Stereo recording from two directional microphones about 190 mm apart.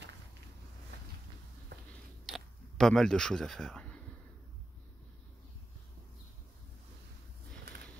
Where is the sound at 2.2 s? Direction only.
Centre (ahead or behind).